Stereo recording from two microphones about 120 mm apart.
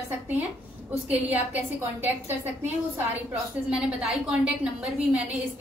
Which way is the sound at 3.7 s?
5° right (ahead or behind).